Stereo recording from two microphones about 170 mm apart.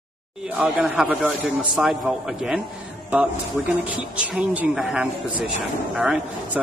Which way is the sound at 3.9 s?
5° right (ahead or behind).